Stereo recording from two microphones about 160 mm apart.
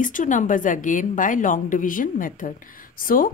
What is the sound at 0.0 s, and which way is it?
Speech, 55° left (ahead or behind).